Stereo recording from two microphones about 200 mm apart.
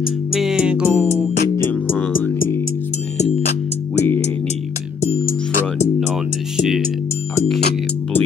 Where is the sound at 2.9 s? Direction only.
35° left (ahead or behind).